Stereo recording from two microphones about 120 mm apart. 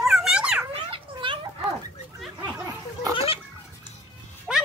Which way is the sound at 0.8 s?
45° right (ahead or behind).